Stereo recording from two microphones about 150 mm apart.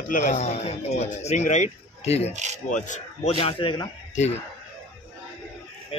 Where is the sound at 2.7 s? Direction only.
55° left (ahead or behind); by 3.8 s 35° left (ahead or behind).